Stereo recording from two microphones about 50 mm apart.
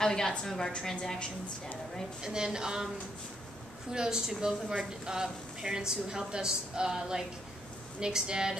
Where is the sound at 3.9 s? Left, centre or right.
Centre.